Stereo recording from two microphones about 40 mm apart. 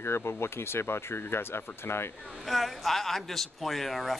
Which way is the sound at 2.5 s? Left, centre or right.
Centre.